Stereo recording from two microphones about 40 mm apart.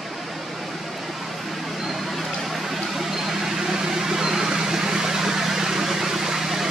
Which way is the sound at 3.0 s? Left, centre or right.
Centre.